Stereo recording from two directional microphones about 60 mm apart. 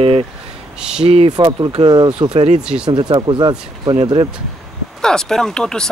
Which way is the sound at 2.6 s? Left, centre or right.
Centre.